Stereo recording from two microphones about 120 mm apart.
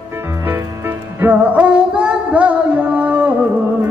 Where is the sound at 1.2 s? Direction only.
15° right (ahead or behind).